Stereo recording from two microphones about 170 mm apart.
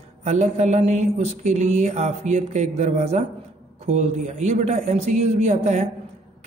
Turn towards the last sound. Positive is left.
turn(degrees=-40)  # may be behind; listen again after turning